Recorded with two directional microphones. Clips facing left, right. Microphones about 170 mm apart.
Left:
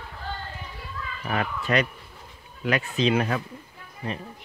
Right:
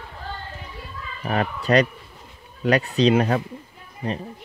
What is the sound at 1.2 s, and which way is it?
Speech, 35° right (ahead or behind).